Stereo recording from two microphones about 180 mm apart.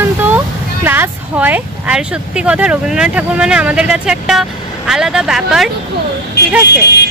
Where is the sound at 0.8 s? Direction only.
10° right (ahead or behind).